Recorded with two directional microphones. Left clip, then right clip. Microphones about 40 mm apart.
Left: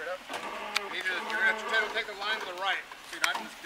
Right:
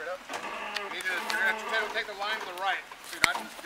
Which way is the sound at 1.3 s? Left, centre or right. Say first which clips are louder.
Left 2 dB; centre.